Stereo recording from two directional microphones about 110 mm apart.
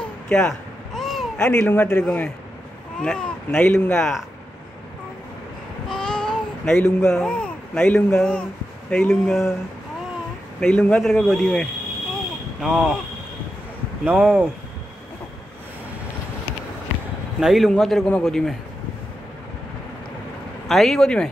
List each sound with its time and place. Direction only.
0.0 s a sound: 5° left (ahead or behind)
1.6 s a man's voice: 20° left (ahead or behind)
1.9 s speech: 10° left (ahead or behind)
5.9 s babbling: 5° left (ahead or behind)
8.9 s speech: 10° left (ahead or behind)
10.6 s a man's voice: 10° left (ahead or behind)
12.5 s speech: 5° right (ahead or behind)
14.0 s speech: 10° right (ahead or behind)
17.4 s a man's voice: centre (ahead or behind)
20.6 s a man's voice: centre (ahead or behind)